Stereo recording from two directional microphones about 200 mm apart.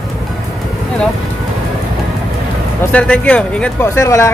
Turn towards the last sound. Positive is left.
turn(degrees=15)  # may be behind; listen again after turning